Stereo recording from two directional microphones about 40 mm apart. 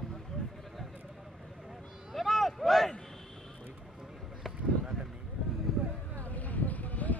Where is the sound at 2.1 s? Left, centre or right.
Centre.